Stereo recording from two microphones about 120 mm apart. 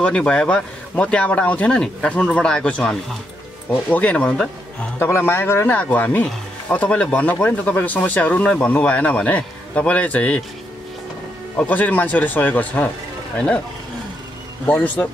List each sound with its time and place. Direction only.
0.0 s speech: 10° left (ahead or behind)
11.6 s speech: 15° left (ahead or behind)
14.7 s speech: 15° left (ahead or behind)